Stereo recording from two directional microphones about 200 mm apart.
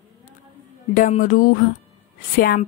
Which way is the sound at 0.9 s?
40° left (ahead or behind).